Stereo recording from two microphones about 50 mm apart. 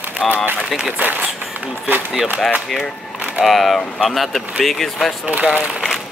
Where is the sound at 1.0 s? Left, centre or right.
Right.